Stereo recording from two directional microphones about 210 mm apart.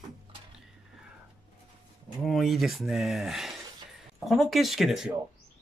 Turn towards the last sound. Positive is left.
turn(degrees=0)  # may be behind; listen again after turning